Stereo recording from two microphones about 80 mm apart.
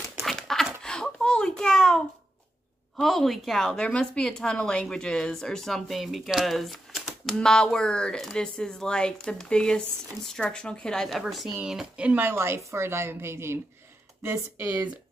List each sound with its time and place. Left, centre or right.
0.2 s dog: centre
0.8 s a sound: centre
3.0 s a woman's voice: centre
7.3 s speech: centre
12.1 s a woman's voice: right